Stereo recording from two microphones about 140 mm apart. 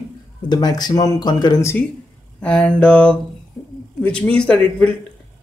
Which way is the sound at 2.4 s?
10° left (ahead or behind).